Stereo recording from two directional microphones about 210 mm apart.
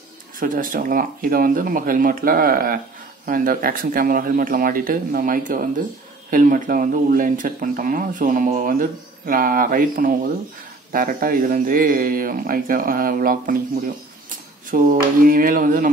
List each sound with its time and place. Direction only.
0.4 s speech: 40° right (ahead or behind)
14.7 s speech: 45° right (ahead or behind)